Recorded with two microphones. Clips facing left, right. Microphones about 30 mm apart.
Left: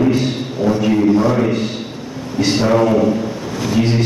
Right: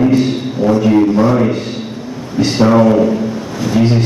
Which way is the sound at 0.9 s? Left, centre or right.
Centre.